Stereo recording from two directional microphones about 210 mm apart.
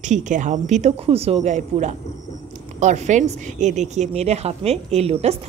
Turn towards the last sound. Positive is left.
turn(degrees=-30)  # may be behind; listen again after turning